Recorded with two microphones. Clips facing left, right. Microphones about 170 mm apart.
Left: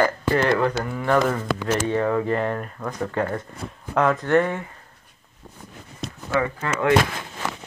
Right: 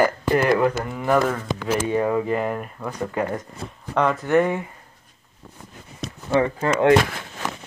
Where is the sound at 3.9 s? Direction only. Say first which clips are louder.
Left 1 dB; centre (ahead or behind).